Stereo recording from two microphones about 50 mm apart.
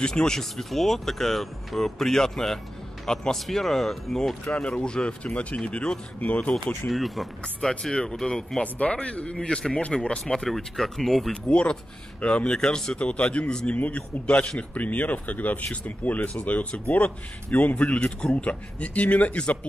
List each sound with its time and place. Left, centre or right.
0.0 s speech: centre
4.6 s a man's voice: centre
6.9 s speech: centre
7.9 s a man's voice: centre
11.5 s a man's voice: centre
13.7 s speech: left
14.2 s a man's voice: left